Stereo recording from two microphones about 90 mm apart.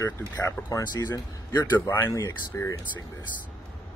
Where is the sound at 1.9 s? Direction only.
25° left (ahead or behind).